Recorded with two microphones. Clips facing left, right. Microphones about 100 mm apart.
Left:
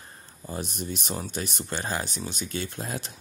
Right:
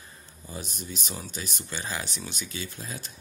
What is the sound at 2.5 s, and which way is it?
Speech, 55° left (ahead or behind).